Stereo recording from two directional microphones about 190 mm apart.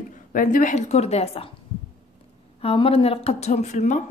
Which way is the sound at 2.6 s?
30° left (ahead or behind).